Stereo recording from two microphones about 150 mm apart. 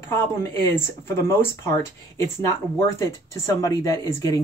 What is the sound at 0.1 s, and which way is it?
Speech, 20° left (ahead or behind).